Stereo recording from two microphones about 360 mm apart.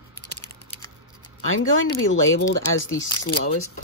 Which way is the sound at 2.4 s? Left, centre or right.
Left.